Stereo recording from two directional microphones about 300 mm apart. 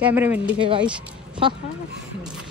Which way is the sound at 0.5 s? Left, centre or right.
Centre.